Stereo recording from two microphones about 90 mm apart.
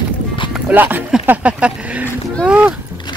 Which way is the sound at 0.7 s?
20° right (ahead or behind).